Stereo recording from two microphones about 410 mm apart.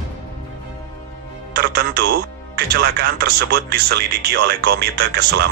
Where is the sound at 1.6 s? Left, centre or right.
Right.